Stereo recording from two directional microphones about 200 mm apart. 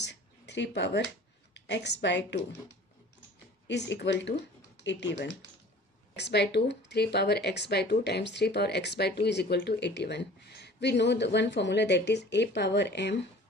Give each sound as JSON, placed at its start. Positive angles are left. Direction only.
{"t": 0.0, "sound": "a sound", "side_deg": 60}
{"t": 1.5, "sound": "a woman's voice", "side_deg": 60}
{"t": 3.6, "sound": "speech", "side_deg": 60}